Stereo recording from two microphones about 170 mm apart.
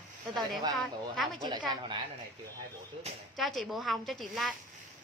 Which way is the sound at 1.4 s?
25° right (ahead or behind).